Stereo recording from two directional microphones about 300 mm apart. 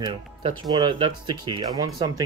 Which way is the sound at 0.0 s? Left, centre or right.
Centre.